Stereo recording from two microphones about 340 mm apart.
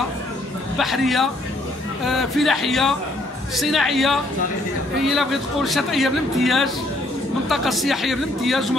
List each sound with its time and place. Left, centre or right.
0.7 s a man's voice: centre